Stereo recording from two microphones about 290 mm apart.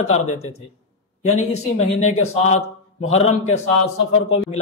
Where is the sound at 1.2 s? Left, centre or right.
Left.